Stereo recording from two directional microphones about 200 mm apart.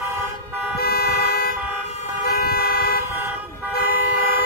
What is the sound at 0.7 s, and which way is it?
Vehicle, 50° left (ahead or behind).